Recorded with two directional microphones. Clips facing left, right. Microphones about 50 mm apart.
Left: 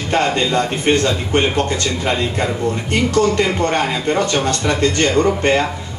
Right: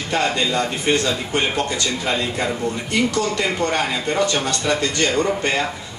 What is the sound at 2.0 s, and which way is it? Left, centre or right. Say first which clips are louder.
Speech: left 4 dB; left.